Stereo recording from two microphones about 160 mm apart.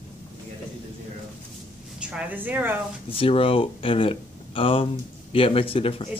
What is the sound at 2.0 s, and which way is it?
Speech, 5° right (ahead or behind).